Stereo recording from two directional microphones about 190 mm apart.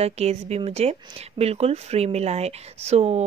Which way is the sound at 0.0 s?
35° right (ahead or behind).